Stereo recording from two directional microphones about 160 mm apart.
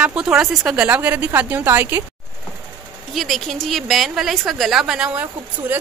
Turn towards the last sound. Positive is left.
turn(degrees=-10)  # may be behind; listen again after turning